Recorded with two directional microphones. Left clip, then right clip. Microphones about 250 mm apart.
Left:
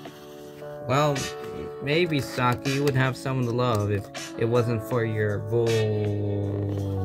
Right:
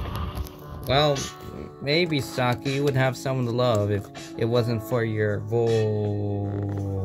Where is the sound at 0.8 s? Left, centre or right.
Centre.